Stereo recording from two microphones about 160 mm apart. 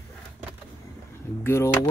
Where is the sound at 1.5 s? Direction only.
15° left (ahead or behind).